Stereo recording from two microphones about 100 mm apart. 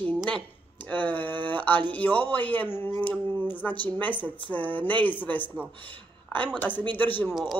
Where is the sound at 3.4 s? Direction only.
15° left (ahead or behind).